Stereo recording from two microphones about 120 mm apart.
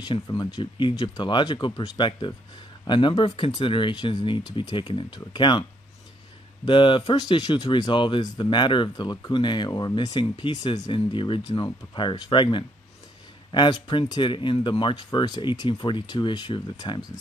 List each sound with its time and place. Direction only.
0.0 s speech: 35° left (ahead or behind)